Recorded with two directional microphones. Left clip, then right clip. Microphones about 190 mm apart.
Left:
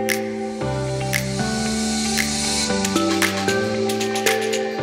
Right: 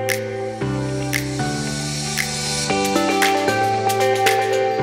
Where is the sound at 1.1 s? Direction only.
Centre (ahead or behind).